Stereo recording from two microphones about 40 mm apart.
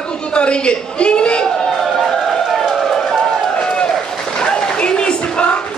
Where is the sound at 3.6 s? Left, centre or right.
Left.